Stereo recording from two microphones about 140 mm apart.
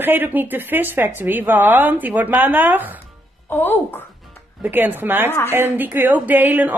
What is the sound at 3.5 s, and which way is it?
Speech, 15° left (ahead or behind).